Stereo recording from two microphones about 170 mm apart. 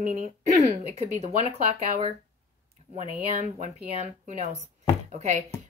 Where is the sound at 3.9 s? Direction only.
40° right (ahead or behind).